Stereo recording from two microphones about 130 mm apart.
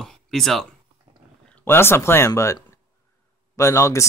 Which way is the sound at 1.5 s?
15° left (ahead or behind).